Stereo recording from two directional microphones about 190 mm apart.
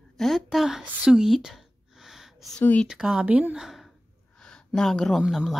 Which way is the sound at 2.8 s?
5° right (ahead or behind).